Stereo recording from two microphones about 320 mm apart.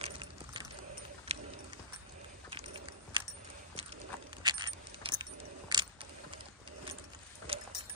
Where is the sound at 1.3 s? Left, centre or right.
Centre.